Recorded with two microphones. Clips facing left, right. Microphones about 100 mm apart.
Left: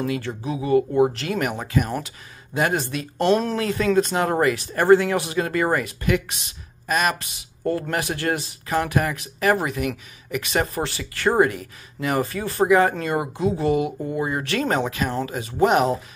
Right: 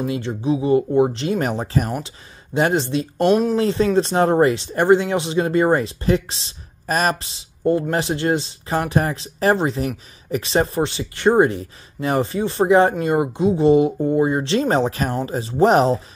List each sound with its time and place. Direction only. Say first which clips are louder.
0.0 s speech: right 3 dB; 20° right (ahead or behind)
3.2 s speech: right 3 dB; 10° right (ahead or behind)
3.5 s speech: right 3 dB; 25° right (ahead or behind)